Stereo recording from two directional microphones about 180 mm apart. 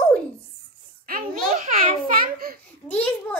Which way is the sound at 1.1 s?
45° right (ahead or behind).